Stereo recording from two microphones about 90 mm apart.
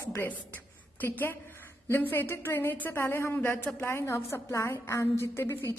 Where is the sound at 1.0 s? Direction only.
25° left (ahead or behind).